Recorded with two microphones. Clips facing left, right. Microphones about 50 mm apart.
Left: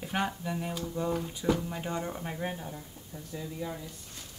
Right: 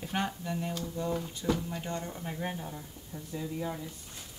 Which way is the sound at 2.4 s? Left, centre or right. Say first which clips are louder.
Left 1 dB; centre.